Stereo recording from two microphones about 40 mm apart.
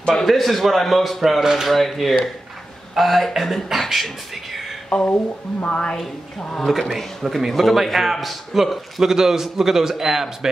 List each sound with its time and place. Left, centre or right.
0.1 s a man's voice: centre
4.8 s a sound: left
5.7 s a woman's voice: left
6.6 s a man's voice: centre
9.0 s a man's voice: centre